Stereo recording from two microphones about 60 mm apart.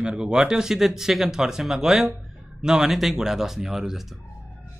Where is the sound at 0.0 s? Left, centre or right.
Centre.